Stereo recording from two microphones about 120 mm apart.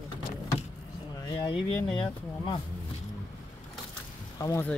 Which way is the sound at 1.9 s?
5° left (ahead or behind).